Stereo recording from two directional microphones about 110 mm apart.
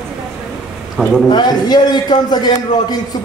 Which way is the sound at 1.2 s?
40° left (ahead or behind).